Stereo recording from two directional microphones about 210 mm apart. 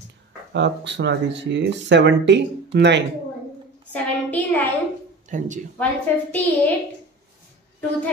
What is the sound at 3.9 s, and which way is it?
Speech, 5° left (ahead or behind).